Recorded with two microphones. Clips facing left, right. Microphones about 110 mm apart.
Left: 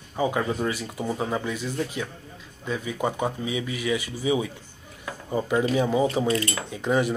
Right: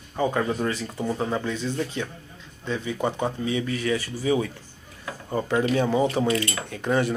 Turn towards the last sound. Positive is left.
turn(degrees=15)  # may be behind; listen again after turning